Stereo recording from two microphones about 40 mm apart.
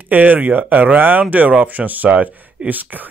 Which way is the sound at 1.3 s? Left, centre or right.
Right.